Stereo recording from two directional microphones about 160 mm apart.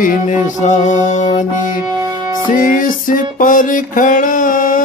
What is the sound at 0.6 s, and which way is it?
Music, 50° left (ahead or behind).